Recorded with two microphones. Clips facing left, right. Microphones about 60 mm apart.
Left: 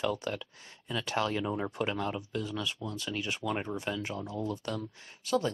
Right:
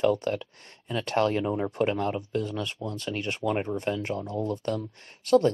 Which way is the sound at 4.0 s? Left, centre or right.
Right.